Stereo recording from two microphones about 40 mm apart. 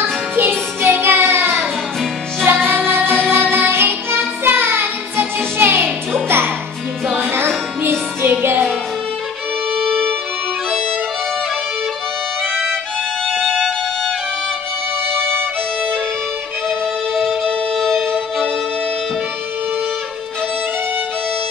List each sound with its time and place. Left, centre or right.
0.0 s music: right
6.2 s music: right
7.2 s music: right
13.5 s violin: centre
16.6 s music: centre